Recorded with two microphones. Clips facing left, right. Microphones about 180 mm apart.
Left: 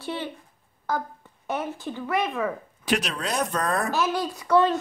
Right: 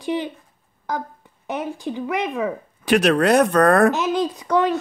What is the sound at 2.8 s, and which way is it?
Speech, 60° right (ahead or behind).